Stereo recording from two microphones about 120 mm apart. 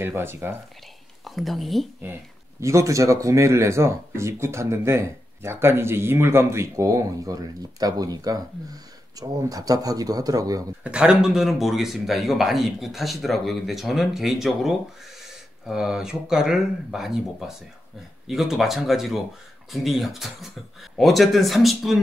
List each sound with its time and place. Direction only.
0.0 s speech: 20° right (ahead or behind)
1.2 s speech: centre (ahead or behind)
2.6 s speech: 25° right (ahead or behind)
10.8 s speech: 10° right (ahead or behind)